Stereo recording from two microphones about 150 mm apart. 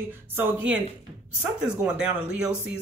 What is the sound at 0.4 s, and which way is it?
Speech, 10° right (ahead or behind).